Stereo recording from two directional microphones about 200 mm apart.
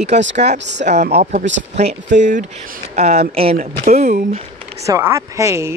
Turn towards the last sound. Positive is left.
turn(degrees=-15)  # may be behind; listen again after turning